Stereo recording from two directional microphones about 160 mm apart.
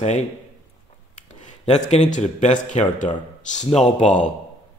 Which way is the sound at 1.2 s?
45° left (ahead or behind).